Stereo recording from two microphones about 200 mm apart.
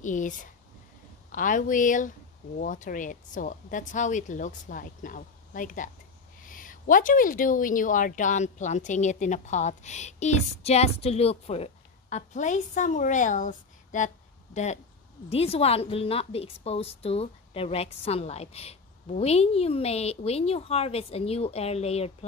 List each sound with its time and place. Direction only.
0.0 s a woman's voice: 40° left (ahead or behind)